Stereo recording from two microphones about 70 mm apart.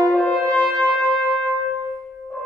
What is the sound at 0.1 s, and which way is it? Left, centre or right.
French horn, centre.